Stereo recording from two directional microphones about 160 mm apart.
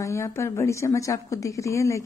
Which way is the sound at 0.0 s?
20° left (ahead or behind).